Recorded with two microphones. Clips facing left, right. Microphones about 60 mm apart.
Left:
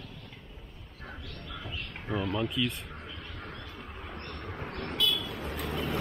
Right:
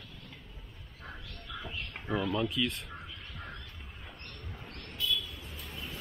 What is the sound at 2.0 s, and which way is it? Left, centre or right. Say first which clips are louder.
Speech: even; centre.